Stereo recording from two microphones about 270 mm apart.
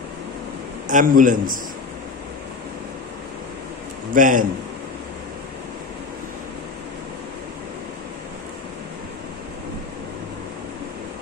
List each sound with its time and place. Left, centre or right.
0.8 s a man's voice: right
4.1 s a man's voice: right